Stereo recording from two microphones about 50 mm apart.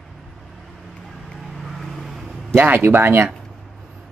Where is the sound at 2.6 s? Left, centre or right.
Right.